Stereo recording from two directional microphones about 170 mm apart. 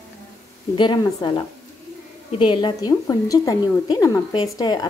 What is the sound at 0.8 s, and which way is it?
A woman's voice, 25° left (ahead or behind).